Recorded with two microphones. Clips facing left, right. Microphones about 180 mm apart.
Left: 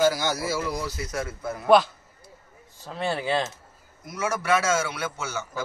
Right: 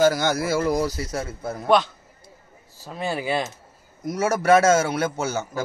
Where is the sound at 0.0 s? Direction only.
50° right (ahead or behind); by 1.7 s 35° right (ahead or behind).